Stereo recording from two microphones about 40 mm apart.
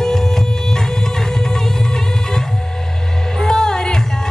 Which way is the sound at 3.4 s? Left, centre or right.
Centre.